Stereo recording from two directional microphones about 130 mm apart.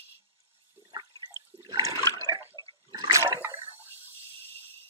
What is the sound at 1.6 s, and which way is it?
Water, 30° right (ahead or behind).